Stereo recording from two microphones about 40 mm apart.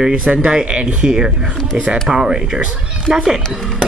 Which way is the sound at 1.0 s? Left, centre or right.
Centre.